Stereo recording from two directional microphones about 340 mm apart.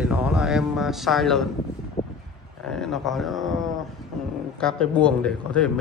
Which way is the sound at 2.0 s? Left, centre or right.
Centre.